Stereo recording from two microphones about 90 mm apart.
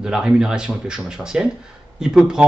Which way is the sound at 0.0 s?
10° right (ahead or behind).